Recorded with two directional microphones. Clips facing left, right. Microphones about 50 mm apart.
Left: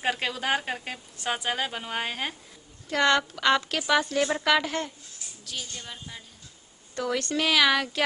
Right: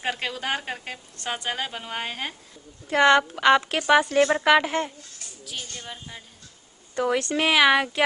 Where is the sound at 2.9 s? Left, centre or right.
Right.